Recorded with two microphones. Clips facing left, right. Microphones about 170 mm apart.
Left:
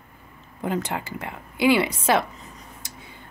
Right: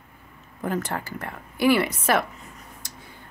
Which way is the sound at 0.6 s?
20° left (ahead or behind).